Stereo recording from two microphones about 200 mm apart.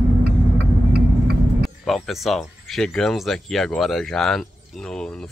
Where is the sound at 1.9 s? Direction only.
Centre (ahead or behind).